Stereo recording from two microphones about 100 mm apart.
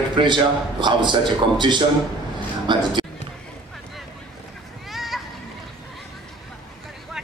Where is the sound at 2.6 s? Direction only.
50° right (ahead or behind).